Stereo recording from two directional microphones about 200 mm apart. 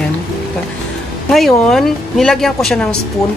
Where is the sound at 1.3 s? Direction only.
Centre (ahead or behind).